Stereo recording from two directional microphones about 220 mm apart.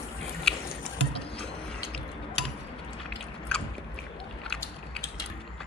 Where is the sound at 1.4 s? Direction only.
5° left (ahead or behind).